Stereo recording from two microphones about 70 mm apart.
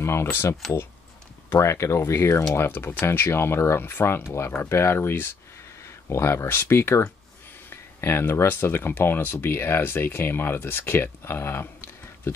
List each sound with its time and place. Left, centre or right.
0.0 s speech: left